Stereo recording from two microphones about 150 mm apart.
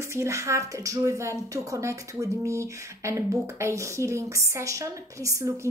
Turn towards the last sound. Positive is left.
turn(degrees=-20)  # may be behind; listen again after turning